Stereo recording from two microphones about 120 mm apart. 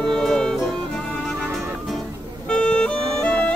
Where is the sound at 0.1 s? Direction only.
5° left (ahead or behind).